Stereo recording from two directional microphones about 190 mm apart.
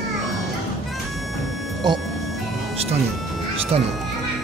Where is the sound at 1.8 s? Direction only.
25° right (ahead or behind).